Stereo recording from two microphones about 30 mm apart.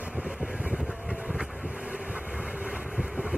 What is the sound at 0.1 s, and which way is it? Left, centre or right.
Vehicle, right.